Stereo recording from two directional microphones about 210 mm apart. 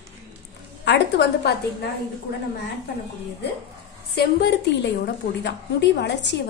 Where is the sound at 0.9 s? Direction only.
50° left (ahead or behind).